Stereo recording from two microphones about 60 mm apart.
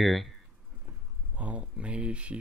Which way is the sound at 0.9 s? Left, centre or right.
Right.